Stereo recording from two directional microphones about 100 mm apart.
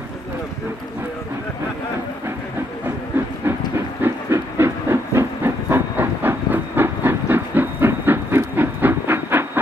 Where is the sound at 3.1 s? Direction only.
20° right (ahead or behind).